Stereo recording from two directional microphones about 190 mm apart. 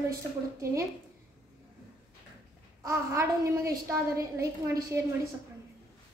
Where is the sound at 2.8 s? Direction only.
15° right (ahead or behind).